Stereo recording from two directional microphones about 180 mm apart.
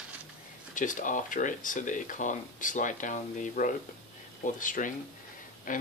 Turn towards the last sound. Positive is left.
turn(degrees=50)  # may be behind; listen again after turning